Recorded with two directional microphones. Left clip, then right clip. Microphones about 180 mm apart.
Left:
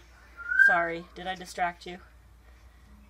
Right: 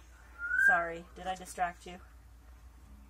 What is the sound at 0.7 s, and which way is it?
Speech, 30° left (ahead or behind).